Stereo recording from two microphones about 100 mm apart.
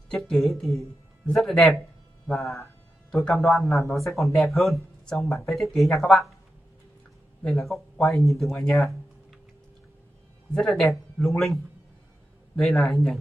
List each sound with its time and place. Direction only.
0.1 s speech: 5° left (ahead or behind)
7.4 s speech: centre (ahead or behind)
10.5 s speech: 5° left (ahead or behind)